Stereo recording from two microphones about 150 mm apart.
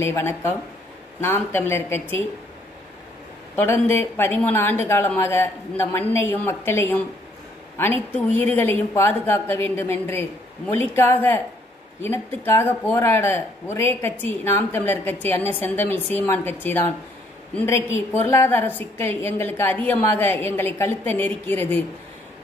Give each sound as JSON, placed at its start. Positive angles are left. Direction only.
{"t": 0.0, "sound": "speech", "side_deg": 15}
{"t": 3.5, "sound": "speech", "side_deg": 15}